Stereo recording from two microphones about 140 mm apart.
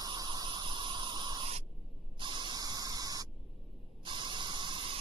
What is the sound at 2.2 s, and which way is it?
Spray, 35° right (ahead or behind).